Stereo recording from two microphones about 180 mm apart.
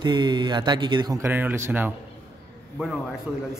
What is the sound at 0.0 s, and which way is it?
Speech, 25° right (ahead or behind).